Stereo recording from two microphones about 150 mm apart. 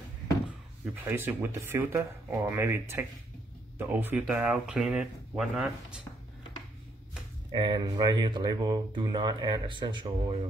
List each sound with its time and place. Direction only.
1.0 s speech: 15° right (ahead or behind)
7.5 s speech: 30° right (ahead or behind)